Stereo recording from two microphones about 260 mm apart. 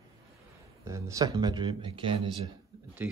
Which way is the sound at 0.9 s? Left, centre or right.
Centre.